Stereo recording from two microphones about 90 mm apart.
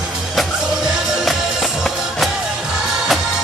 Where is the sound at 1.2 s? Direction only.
Centre (ahead or behind).